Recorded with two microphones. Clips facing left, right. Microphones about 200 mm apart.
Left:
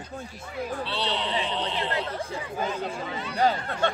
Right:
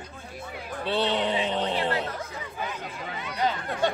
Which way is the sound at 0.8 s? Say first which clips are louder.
Right 9 dB; 50° right (ahead or behind).